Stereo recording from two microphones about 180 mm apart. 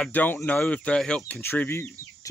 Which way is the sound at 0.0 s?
10° left (ahead or behind).